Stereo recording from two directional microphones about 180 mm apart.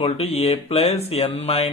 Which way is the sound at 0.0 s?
35° left (ahead or behind).